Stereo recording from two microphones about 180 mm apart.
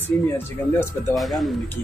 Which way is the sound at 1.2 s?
Centre (ahead or behind).